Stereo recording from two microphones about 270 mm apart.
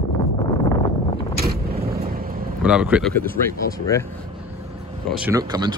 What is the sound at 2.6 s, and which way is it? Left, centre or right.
Speech, centre.